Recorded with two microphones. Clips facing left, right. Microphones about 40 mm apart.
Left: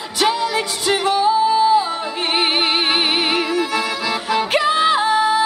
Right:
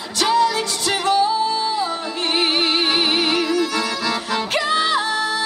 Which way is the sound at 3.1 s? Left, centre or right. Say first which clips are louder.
Even; centre.